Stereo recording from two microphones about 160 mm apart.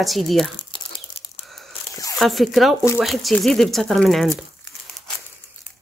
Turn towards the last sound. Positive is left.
turn(degrees=0)  # may be behind; listen again after turning